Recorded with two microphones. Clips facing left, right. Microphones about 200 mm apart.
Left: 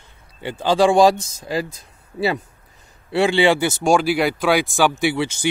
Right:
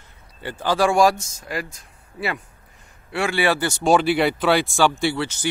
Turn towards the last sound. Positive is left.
turn(degrees=15)  # may be behind; listen again after turning